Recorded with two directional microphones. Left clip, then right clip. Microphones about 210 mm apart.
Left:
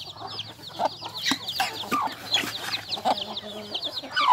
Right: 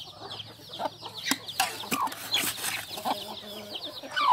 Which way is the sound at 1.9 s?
50° right (ahead or behind).